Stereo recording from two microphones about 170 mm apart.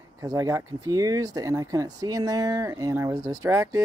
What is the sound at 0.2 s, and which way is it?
Speech, 20° right (ahead or behind).